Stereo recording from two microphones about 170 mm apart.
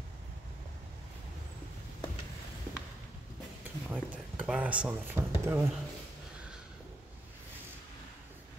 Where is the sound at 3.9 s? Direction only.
10° right (ahead or behind).